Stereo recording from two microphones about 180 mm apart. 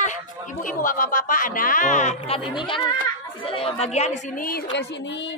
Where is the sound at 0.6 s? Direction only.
50° left (ahead or behind); by 2.9 s 25° left (ahead or behind).